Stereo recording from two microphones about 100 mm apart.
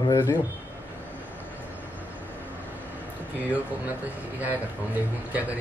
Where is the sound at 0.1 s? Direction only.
30° left (ahead or behind).